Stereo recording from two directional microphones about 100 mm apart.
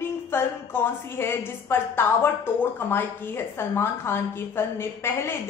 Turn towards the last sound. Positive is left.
turn(degrees=25)  # may be behind; listen again after turning